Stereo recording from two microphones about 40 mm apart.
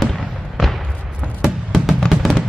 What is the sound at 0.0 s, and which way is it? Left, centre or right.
Fireworks, centre.